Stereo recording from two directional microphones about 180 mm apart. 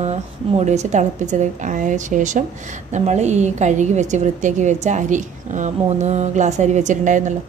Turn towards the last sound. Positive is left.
turn(degrees=-45)  # may be behind; listen again after turning